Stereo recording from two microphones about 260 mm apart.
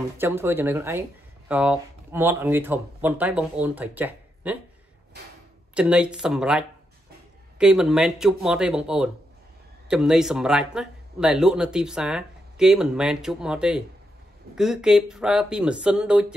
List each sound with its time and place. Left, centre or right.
0.2 s speech: centre
5.8 s speech: centre